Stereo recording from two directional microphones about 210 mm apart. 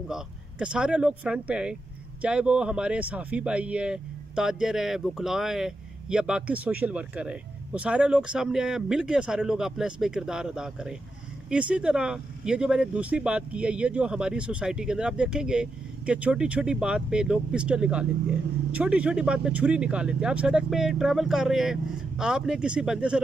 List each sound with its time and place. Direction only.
0.1 s speech: 5° right (ahead or behind)